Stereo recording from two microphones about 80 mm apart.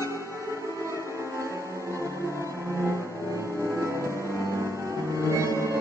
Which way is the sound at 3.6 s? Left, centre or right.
Right.